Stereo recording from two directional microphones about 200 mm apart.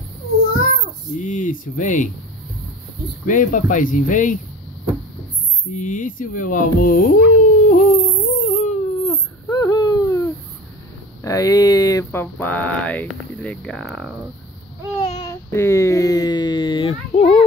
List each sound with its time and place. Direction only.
0.6 s a child's voice: 40° left (ahead or behind)
3.3 s speech: 40° left (ahead or behind)
5.8 s speech: 40° left (ahead or behind)
8.3 s baby cry: 35° left (ahead or behind)
9.5 s a sound: 20° left (ahead or behind)
11.2 s speech: 15° left (ahead or behind); by 14.1 s centre (ahead or behind)
15.0 s a sound: 25° left (ahead or behind)